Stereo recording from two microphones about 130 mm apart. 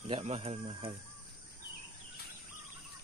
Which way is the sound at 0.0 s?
50° right (ahead or behind).